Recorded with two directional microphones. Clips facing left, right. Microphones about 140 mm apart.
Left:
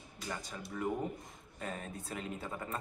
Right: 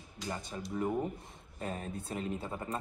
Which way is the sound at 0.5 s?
30° right (ahead or behind).